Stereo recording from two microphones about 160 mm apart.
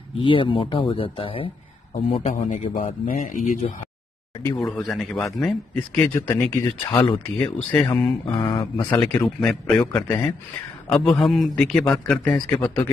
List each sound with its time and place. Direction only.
0.1 s speech: 30° left (ahead or behind)
2.0 s a man's voice: 45° left (ahead or behind)
2.7 s speech: 55° left (ahead or behind)
4.6 s a man's voice: centre (ahead or behind)
6.9 s speech: 30° left (ahead or behind)
7.4 s speech: 5° left (ahead or behind)
8.3 s speech: 30° left (ahead or behind)
9.0 s a man's voice: 15° left (ahead or behind)